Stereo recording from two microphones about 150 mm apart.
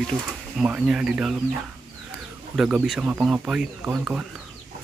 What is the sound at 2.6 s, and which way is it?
Speech, 5° right (ahead or behind).